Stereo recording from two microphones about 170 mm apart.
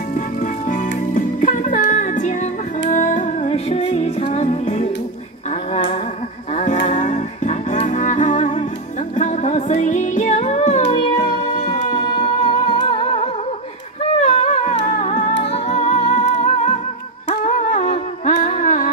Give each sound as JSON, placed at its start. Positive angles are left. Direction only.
{"t": 0.1, "sound": "music", "side_deg": 50}
{"t": 3.4, "sound": "music", "side_deg": 35}
{"t": 6.5, "sound": "music", "side_deg": 45}
{"t": 11.0, "sound": "music", "side_deg": 30}
{"t": 14.1, "sound": "humming", "side_deg": 45}
{"t": 15.4, "sound": "music", "side_deg": 40}